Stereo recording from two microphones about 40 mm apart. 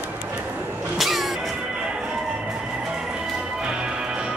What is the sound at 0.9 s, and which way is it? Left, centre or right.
Music, centre.